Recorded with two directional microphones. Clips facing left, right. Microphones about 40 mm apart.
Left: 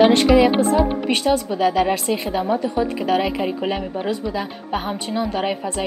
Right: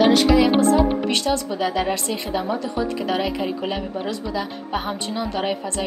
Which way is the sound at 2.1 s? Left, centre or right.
Left.